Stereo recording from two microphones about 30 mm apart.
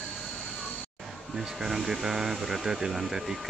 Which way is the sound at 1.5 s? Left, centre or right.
Centre.